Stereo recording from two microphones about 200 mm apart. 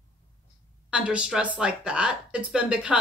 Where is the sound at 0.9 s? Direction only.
5° right (ahead or behind).